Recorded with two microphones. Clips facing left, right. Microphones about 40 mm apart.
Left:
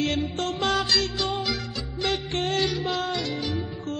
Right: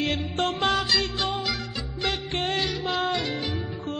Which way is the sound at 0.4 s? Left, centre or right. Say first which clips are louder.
Right 2 dB; right.